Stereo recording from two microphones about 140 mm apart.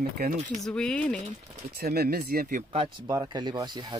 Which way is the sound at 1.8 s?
90° right.